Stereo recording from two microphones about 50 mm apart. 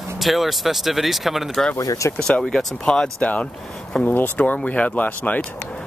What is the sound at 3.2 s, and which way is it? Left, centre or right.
Speech, left.